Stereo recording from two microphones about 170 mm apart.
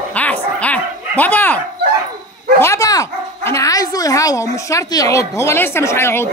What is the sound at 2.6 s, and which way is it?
Speech, 15° left (ahead or behind).